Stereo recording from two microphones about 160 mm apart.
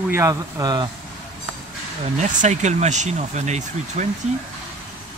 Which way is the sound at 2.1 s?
50° right (ahead or behind).